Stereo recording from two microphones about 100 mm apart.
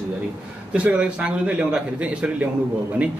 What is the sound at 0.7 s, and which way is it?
A man's voice, 10° right (ahead or behind).